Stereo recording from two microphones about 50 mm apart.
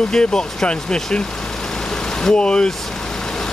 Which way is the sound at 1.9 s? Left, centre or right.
Centre.